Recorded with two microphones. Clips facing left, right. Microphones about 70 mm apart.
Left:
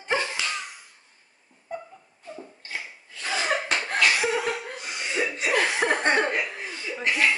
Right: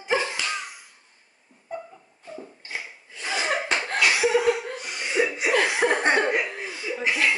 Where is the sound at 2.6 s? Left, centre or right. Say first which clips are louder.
Left 2 dB; centre.